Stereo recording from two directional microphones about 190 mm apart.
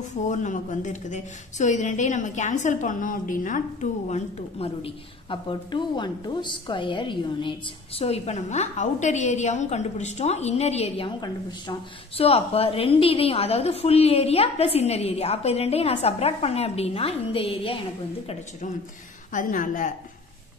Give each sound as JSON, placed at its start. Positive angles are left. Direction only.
{"t": 0.1, "sound": "speech", "side_deg": 40}
{"t": 12.2, "sound": "speech", "side_deg": 30}
{"t": 19.3, "sound": "a woman's voice", "side_deg": 45}